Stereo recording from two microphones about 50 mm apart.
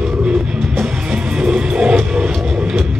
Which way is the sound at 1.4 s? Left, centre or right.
Right.